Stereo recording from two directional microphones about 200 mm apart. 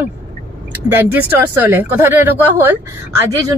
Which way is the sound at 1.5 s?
10° right (ahead or behind).